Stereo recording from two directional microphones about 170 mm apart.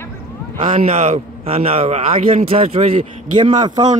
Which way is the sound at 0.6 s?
40° right (ahead or behind).